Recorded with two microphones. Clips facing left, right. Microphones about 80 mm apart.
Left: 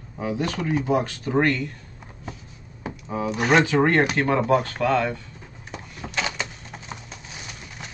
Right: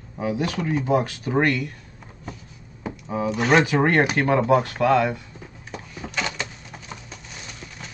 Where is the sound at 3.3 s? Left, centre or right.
Centre.